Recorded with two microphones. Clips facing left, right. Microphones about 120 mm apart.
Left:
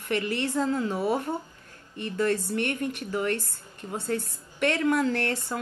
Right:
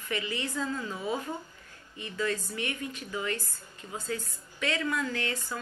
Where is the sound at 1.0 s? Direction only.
65° left (ahead or behind).